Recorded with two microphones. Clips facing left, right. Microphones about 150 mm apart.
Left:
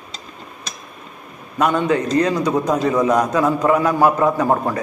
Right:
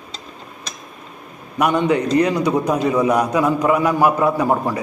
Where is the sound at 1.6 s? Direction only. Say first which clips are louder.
Right 1 dB; 15° right (ahead or behind).